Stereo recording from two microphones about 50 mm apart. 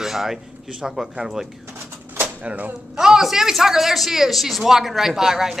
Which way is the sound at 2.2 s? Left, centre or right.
Right.